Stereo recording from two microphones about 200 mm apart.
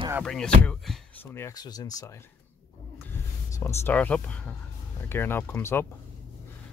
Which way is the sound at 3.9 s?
5° left (ahead or behind).